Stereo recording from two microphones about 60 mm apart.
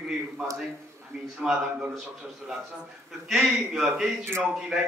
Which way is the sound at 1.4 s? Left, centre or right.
Centre.